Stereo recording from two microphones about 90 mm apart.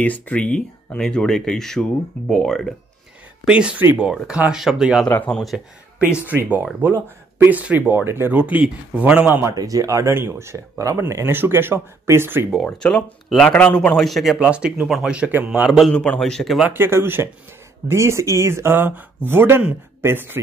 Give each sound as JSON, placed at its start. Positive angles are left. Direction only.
{"t": 0.0, "sound": "speech", "side_deg": 20}
{"t": 3.4, "sound": "a man's voice", "side_deg": -15}
{"t": 5.0, "sound": "speech", "side_deg": 15}
{"t": 6.2, "sound": "speech", "side_deg": -15}
{"t": 9.6, "sound": "speech", "side_deg": -40}
{"t": 12.9, "sound": "a man's voice", "side_deg": 5}
{"t": 15.9, "sound": "speech", "side_deg": 10}
{"t": 16.7, "sound": "speech", "side_deg": -25}